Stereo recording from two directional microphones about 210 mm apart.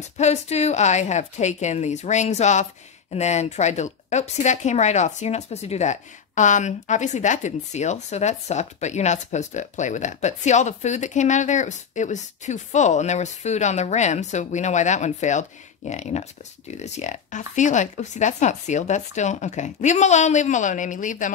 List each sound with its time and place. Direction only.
0.2 s a woman's voice: 30° left (ahead or behind)